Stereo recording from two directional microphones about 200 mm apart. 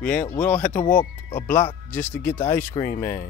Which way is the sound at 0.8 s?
40° left (ahead or behind).